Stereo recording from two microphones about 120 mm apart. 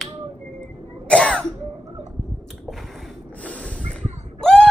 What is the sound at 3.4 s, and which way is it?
Snort, 10° left (ahead or behind).